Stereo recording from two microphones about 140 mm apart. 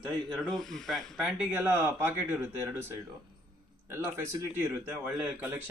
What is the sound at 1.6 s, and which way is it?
Speech, 15° right (ahead or behind).